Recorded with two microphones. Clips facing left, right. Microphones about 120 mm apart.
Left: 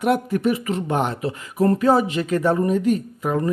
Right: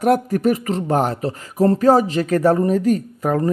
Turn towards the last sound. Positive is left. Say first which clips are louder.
# right 3 dB
turn(degrees=-40)  # may be behind; listen again after turning